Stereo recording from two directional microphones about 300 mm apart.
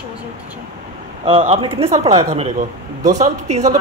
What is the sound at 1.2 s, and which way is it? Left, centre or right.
Speech, centre.